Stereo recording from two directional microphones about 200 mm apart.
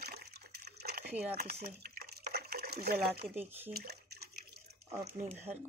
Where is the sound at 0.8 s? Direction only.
50° right (ahead or behind).